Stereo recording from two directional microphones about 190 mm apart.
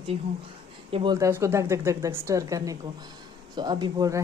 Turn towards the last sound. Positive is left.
turn(degrees=-20)  # may be behind; listen again after turning